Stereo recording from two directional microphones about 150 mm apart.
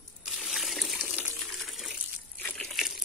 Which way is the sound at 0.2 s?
Centre (ahead or behind).